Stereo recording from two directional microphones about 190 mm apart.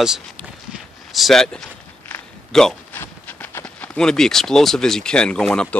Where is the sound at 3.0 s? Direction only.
10° left (ahead or behind).